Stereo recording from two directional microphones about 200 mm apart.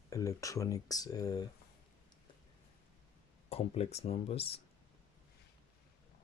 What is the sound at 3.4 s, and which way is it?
Speech, 30° left (ahead or behind).